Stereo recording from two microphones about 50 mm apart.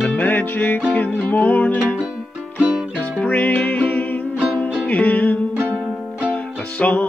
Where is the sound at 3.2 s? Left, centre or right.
Left.